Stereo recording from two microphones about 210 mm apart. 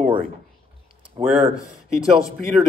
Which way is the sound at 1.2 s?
25° right (ahead or behind).